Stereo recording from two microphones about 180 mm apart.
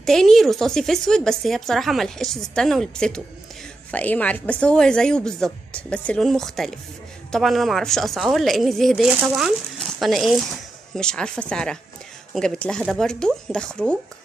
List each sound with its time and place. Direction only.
0.0 s a woman's voice: centre (ahead or behind)